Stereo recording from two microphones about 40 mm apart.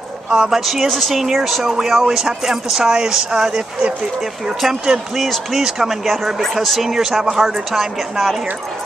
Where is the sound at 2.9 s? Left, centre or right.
Centre.